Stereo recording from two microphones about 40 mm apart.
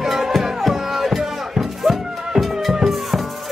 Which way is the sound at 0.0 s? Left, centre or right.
Centre.